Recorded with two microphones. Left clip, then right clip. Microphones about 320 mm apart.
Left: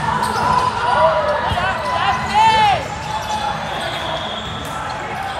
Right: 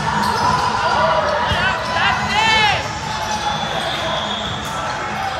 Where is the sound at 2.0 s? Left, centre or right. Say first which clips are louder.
Left 2 dB; centre.